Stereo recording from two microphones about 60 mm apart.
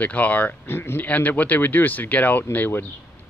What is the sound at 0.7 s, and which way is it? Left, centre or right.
Speech, left.